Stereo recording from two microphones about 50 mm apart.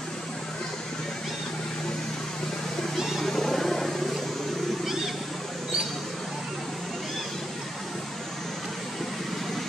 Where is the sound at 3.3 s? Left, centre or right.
Centre.